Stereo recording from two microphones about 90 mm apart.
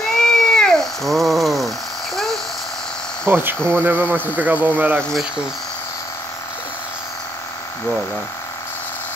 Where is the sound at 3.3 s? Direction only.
25° right (ahead or behind).